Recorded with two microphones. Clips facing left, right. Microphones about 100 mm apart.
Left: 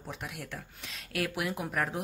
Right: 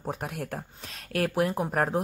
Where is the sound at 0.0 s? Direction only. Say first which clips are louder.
Right 8 dB; 45° right (ahead or behind).